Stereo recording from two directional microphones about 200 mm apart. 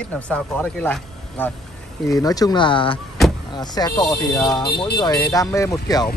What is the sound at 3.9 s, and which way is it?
Speech, centre (ahead or behind).